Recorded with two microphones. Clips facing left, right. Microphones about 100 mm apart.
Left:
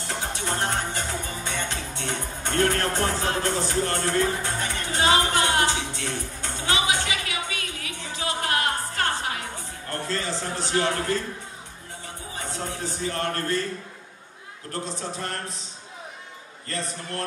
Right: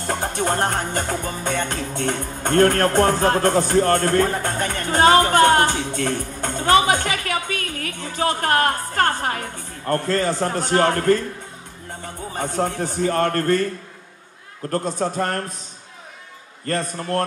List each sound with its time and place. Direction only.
0.0 s music: 50° right (ahead or behind)
12.3 s music: 50° right (ahead or behind)
14.7 s music: 50° right (ahead or behind)
16.6 s music: 50° right (ahead or behind)